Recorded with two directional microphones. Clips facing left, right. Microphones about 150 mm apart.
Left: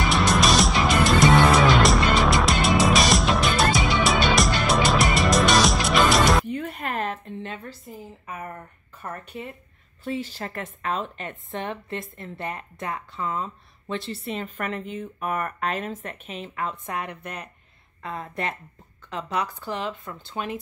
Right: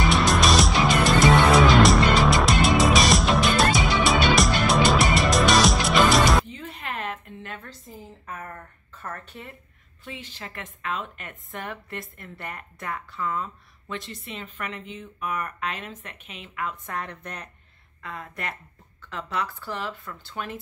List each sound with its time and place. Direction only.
0.0 s music: centre (ahead or behind)
6.4 s a sound: 55° left (ahead or behind); by 7.3 s 35° left (ahead or behind)
7.4 s a sound: 20° left (ahead or behind)
7.8 s a woman's voice: 10° left (ahead or behind)
10.0 s a woman's voice: 40° left (ahead or behind)
16.8 s a woman's voice: 15° left (ahead or behind)
18.0 s speech: 30° left (ahead or behind)